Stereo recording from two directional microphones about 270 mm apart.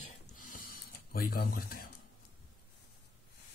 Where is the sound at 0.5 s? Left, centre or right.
Left.